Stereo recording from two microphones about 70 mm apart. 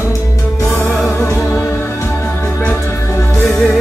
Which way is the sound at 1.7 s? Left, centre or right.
Left.